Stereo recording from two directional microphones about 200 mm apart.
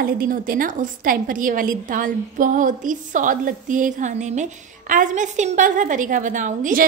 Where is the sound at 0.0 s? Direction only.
45° right (ahead or behind).